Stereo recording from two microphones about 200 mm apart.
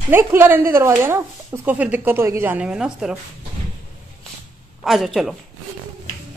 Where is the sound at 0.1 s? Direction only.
10° right (ahead or behind).